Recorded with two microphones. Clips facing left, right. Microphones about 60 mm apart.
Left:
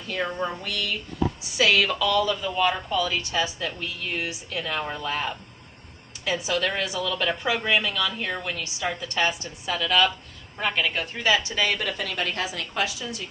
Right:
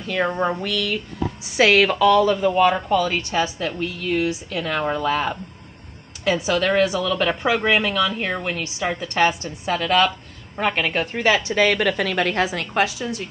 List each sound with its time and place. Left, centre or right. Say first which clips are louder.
0.0 s a sound: right 6 dB; right
0.3 s speech: right 7 dB; right
0.7 s speech: right 5 dB; right
1.6 s speech: right 6 dB; right
4.1 s a woman's voice: right 10 dB; right